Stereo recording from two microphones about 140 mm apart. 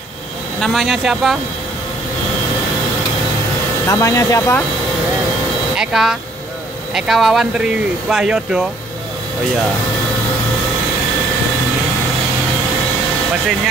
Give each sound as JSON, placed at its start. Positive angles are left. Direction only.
{"t": 0.6, "sound": "speech", "side_deg": 0}
{"t": 3.8, "sound": "speech", "side_deg": 25}
{"t": 5.8, "sound": "speech", "side_deg": -5}